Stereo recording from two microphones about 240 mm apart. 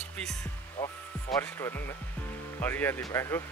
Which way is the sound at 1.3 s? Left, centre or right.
Centre.